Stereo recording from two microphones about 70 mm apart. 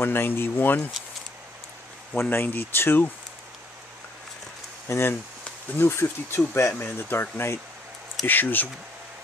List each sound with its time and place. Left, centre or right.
0.0 s speech: left
2.1 s speech: left
4.8 s speech: left